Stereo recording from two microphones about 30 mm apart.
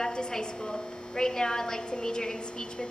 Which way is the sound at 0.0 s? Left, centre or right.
Left.